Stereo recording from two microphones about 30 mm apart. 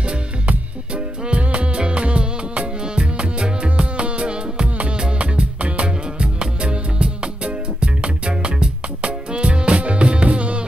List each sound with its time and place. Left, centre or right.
1.2 s music: right